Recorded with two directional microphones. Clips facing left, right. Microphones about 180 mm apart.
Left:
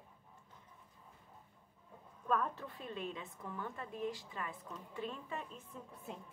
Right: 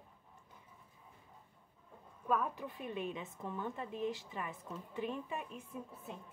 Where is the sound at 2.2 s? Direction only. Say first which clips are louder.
Right 1 dB; 10° right (ahead or behind).